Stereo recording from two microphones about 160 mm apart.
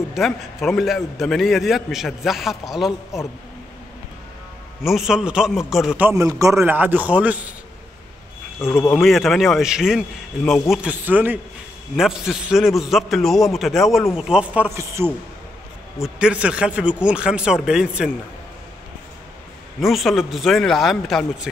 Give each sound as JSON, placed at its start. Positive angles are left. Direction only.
{"t": 0.1, "sound": "a man's voice", "side_deg": 0}
{"t": 4.8, "sound": "a man's voice", "side_deg": 0}
{"t": 5.9, "sound": "a man's voice", "side_deg": -15}
{"t": 8.5, "sound": "speech", "side_deg": 15}
{"t": 8.9, "sound": "a man's voice", "side_deg": 0}
{"t": 16.0, "sound": "a man's voice", "side_deg": -5}
{"t": 19.8, "sound": "a man's voice", "side_deg": 0}